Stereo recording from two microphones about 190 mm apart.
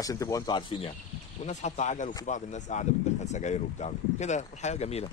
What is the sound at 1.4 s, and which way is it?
Speech, 40° left (ahead or behind).